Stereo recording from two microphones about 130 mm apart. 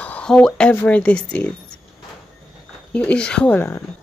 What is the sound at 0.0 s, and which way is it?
Speech, 10° left (ahead or behind).